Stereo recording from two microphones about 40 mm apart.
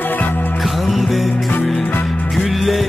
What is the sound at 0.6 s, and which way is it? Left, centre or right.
Music, centre.